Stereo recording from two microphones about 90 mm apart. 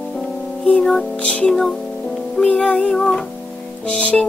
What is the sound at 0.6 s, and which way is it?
Music, 10° left (ahead or behind).